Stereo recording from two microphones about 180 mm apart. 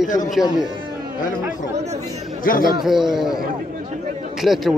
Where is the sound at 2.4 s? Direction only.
50° left (ahead or behind).